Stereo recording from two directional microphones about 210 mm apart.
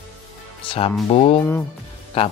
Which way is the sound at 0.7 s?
25° left (ahead or behind).